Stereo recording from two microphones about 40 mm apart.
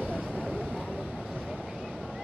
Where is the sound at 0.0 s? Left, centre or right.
Right.